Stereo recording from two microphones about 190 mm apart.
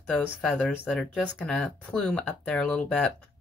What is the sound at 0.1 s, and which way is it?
Speech, 5° left (ahead or behind).